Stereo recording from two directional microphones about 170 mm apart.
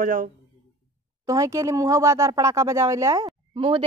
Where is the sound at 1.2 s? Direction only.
20° right (ahead or behind).